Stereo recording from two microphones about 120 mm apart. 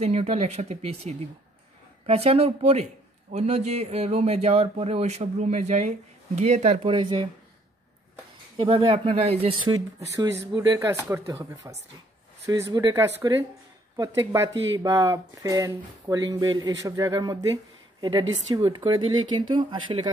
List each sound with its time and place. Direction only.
0.0 s speech: 65° right (ahead or behind)
6.9 s speech: 45° right (ahead or behind)
8.5 s speech: 50° right (ahead or behind)
9.7 s speech: 30° right (ahead or behind)